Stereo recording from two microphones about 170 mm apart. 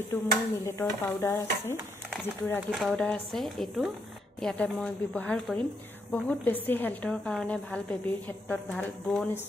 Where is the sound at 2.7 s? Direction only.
Centre (ahead or behind).